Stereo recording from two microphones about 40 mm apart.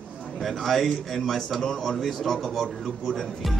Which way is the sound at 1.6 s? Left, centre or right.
Centre.